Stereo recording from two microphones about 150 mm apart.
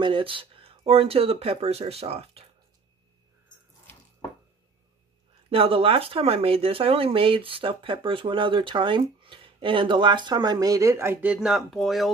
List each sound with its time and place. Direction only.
0.0 s speech: 35° right (ahead or behind)
5.5 s speech: 40° right (ahead or behind); by 12.1 s centre (ahead or behind)